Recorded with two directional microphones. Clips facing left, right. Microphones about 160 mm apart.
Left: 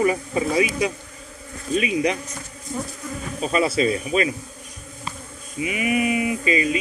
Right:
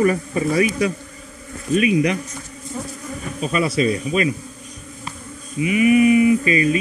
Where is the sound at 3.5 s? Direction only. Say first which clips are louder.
Right 1 dB; 25° left (ahead or behind).